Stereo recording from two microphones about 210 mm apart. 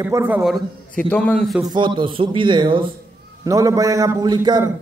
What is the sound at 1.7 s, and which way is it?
A man's voice, 20° right (ahead or behind).